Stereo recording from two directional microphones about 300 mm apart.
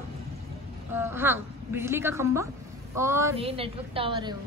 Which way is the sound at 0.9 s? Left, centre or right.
Centre.